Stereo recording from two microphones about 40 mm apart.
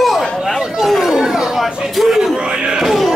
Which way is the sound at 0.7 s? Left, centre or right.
Centre.